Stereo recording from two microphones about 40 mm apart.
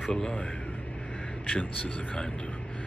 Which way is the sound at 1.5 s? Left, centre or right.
Left.